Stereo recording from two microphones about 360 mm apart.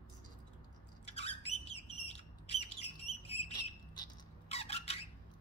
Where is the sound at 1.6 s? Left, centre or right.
Centre.